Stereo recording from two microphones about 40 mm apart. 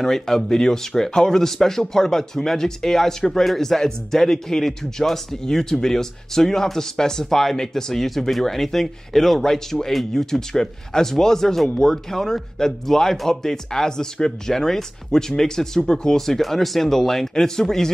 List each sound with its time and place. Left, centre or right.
0.0 s speech: centre
11.7 s speech: centre
16.2 s speech: centre